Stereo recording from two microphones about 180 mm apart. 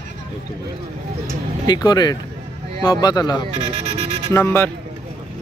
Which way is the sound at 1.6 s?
25° left (ahead or behind).